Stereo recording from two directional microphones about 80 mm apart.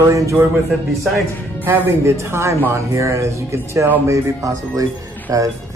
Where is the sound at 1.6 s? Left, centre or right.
Right.